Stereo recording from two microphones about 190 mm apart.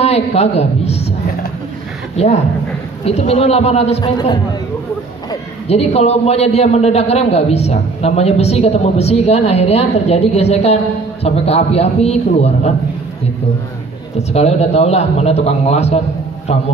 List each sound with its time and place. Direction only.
0.0 s a woman's voice: 35° left (ahead or behind)
2.1 s a man's voice: 35° left (ahead or behind)
5.7 s a man's voice: 35° left (ahead or behind)
14.1 s a man's voice: 35° left (ahead or behind)